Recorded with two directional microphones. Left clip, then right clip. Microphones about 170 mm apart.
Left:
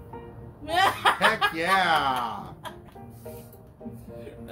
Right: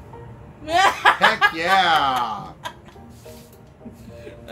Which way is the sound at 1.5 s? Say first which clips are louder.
Right 5 dB; 15° left (ahead or behind).